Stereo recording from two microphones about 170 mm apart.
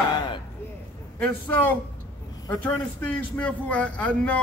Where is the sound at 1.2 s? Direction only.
10° left (ahead or behind).